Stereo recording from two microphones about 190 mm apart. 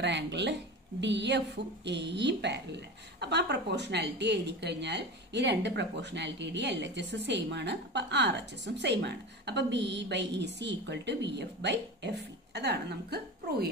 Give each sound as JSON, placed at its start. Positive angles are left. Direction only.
{"t": 0.0, "sound": "speech", "side_deg": -65}